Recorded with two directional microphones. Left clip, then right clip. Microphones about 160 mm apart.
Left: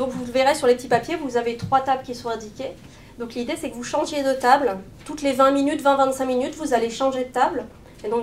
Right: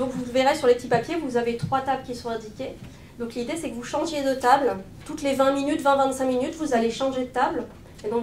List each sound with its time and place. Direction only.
0.3 s speech: 20° left (ahead or behind)